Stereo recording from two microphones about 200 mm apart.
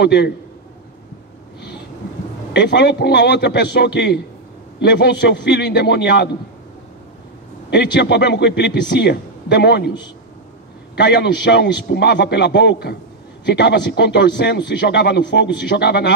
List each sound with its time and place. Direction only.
0.0 s a man's voice: 55° left (ahead or behind)
2.5 s a man's voice: 60° left (ahead or behind)
7.7 s a man's voice: 60° left (ahead or behind)
11.0 s a man's voice: 60° left (ahead or behind)